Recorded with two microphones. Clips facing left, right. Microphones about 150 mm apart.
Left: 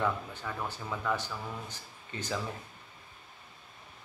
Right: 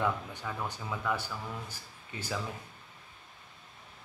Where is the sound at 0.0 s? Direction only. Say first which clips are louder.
Even; 10° right (ahead or behind).